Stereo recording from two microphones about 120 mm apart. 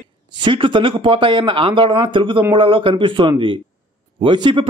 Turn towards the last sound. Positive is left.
turn(degrees=-40)  # may be behind; listen again after turning